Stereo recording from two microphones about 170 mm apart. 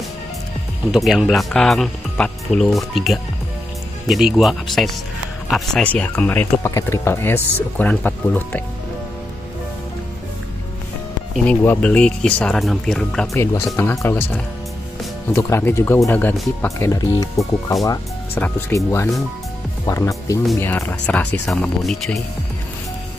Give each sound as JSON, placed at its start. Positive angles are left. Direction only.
{"t": 0.9, "sound": "speech", "side_deg": 0}
{"t": 11.3, "sound": "speech", "side_deg": 10}
{"t": 13.3, "sound": "speech", "side_deg": 15}
{"t": 19.9, "sound": "speech", "side_deg": 20}